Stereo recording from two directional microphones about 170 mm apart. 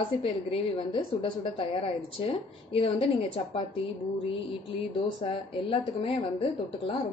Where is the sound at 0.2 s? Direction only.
30° left (ahead or behind).